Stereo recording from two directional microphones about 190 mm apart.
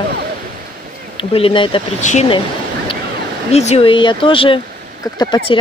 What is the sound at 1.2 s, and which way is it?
Speech, 30° left (ahead or behind).